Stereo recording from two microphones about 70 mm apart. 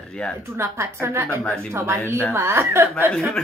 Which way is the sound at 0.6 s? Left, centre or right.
Right.